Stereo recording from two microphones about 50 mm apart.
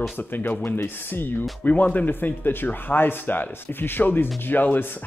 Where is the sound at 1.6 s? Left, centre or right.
Left.